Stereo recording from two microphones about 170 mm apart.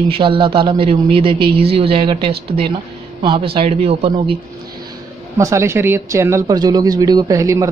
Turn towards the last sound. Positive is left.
turn(degrees=-20)  # may be behind; listen again after turning